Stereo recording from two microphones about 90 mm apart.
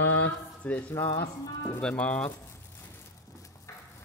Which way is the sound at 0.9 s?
30° left (ahead or behind).